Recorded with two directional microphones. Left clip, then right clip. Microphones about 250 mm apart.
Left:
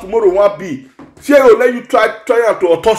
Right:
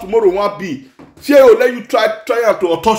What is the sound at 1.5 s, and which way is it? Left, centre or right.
Speech, centre.